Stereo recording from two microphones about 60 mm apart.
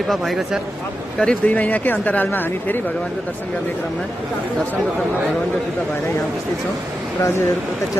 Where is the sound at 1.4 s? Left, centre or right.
Left.